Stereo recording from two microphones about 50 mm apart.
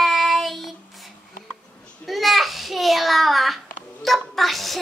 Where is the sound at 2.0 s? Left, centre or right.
Centre.